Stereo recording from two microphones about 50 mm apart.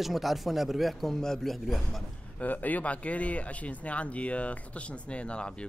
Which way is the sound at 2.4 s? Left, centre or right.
Left.